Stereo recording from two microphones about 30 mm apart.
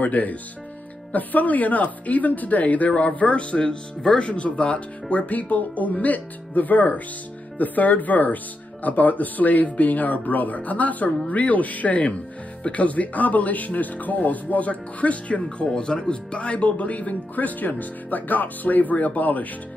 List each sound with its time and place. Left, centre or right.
0.0 s speech: left
2.9 s speech: left
15.6 s speech: left